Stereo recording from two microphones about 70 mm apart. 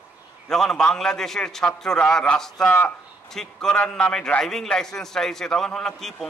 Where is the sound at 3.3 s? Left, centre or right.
Centre.